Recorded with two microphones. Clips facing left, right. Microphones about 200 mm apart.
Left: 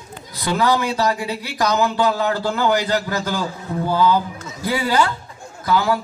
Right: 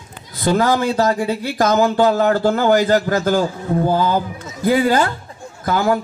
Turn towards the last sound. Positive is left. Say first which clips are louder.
# right 2 dB
turn(degrees=-50)  # may be behind; listen again after turning